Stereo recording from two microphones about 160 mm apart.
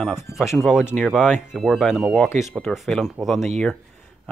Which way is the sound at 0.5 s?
Centre (ahead or behind).